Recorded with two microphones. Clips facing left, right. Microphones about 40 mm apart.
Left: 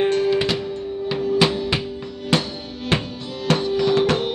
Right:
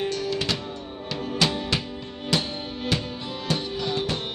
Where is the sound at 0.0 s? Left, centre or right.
Left.